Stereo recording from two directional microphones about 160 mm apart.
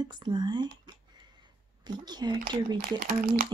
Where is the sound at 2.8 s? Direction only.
65° right (ahead or behind).